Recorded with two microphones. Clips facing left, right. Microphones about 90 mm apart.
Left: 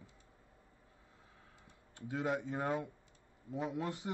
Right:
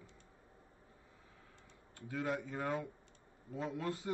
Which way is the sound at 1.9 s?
20° left (ahead or behind).